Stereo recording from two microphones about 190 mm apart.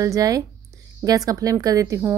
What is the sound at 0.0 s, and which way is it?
Speech, 20° right (ahead or behind).